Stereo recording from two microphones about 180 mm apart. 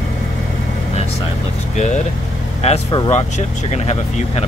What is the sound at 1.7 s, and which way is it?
Speech, 40° left (ahead or behind).